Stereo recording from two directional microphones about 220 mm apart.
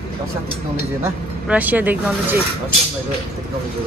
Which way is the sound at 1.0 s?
5° right (ahead or behind).